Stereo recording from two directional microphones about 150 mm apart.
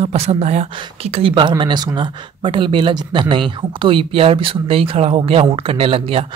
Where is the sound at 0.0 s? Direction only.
45° right (ahead or behind).